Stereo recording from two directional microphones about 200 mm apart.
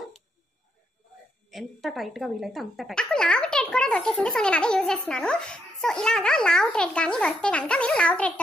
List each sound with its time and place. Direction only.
1.5 s speech: centre (ahead or behind)